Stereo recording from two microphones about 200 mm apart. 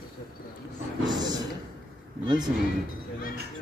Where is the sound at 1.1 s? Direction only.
20° right (ahead or behind).